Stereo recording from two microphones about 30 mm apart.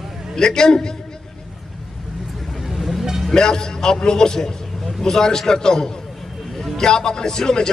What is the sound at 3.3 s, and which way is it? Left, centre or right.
A man's voice, left.